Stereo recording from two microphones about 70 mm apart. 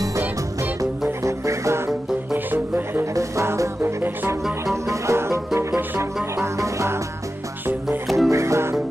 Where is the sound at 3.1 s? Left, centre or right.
Right.